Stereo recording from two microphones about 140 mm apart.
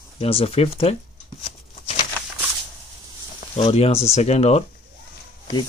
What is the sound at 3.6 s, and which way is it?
Speech, 45° left (ahead or behind).